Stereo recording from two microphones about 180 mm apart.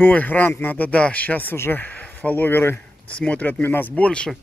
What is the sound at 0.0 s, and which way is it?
Speech, 10° left (ahead or behind).